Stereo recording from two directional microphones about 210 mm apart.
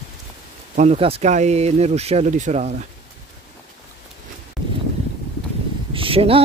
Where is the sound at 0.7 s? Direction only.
30° right (ahead or behind).